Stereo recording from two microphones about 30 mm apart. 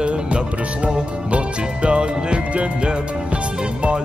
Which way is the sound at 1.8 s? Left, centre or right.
Right.